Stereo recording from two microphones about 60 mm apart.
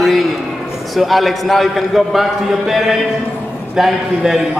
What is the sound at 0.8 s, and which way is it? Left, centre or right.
A man's voice, centre.